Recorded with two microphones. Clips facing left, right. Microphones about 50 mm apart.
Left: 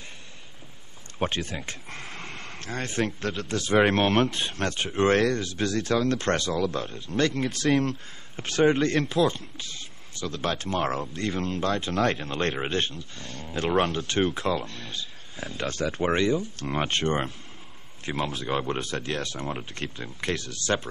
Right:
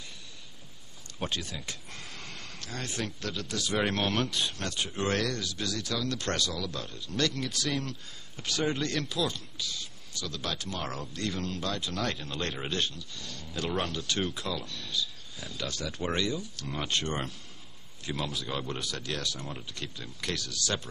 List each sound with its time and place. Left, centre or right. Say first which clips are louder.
1.2 s speech: left 6 dB; left